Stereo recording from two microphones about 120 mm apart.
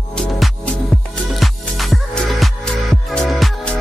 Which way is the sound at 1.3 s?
Centre (ahead or behind).